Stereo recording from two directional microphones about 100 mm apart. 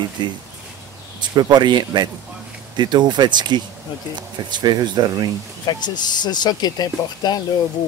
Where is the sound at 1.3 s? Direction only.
45° right (ahead or behind).